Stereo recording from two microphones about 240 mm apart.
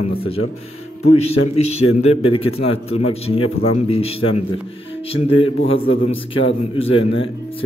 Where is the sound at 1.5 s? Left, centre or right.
Left.